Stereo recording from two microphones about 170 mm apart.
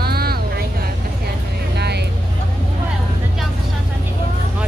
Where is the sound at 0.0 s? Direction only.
65° right (ahead or behind).